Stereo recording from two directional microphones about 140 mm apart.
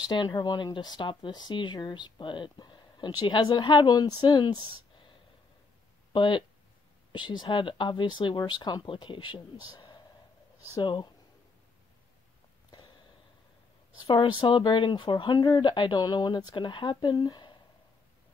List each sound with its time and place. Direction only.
0.1 s speech: 30° left (ahead or behind)
6.1 s speech: 35° left (ahead or behind)
14.0 s speech: 35° left (ahead or behind)